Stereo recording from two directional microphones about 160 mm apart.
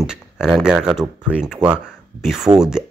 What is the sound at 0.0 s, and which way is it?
Speech, 5° right (ahead or behind).